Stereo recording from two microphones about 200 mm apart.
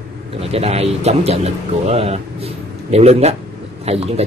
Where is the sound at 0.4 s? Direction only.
30° right (ahead or behind).